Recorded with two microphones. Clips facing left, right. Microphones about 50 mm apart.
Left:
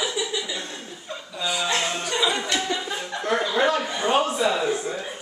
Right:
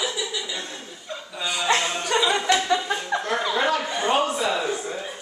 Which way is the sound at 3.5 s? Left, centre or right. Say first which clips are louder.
Left 1 dB; centre.